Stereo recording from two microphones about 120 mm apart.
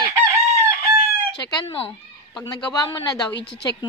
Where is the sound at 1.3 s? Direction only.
45° left (ahead or behind).